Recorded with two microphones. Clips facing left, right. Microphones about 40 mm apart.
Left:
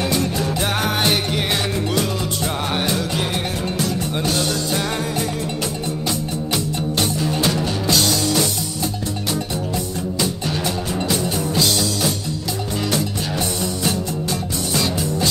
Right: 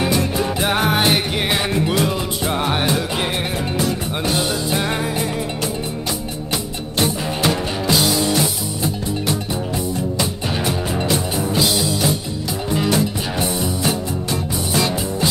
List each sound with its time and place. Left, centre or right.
0.0 s music: centre
7.4 s music: centre
9.8 s music: centre